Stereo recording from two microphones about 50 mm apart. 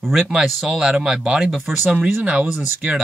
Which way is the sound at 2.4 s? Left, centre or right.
Right.